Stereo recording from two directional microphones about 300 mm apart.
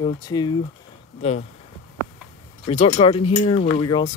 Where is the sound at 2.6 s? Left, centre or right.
Left.